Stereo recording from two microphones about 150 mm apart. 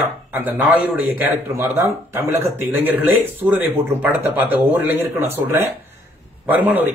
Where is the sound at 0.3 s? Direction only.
10° right (ahead or behind).